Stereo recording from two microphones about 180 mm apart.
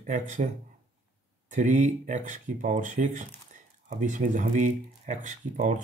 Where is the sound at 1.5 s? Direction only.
45° right (ahead or behind).